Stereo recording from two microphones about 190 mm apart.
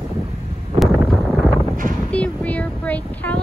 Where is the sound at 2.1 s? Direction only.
5° left (ahead or behind).